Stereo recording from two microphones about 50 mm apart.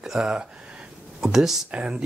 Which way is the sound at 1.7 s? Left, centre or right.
Centre.